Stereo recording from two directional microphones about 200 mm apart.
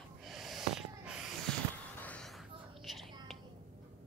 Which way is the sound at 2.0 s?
5° left (ahead or behind).